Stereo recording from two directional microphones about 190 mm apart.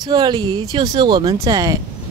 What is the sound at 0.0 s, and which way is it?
Speech, 20° right (ahead or behind).